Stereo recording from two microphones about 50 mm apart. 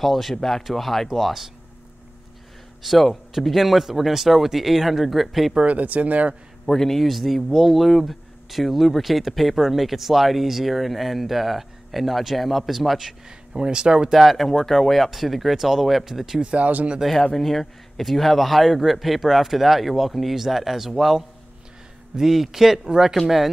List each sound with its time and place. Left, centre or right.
0.0 s speech: centre
2.8 s speech: centre
5.5 s speech: right
6.6 s speech: centre
13.6 s a man's voice: centre
14.1 s speech: centre
16.3 s speech: right
17.0 s a man's voice: centre